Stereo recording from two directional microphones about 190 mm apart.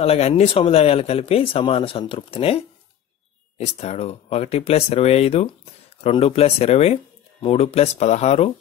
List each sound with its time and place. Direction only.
0.0 s speech: 30° left (ahead or behind)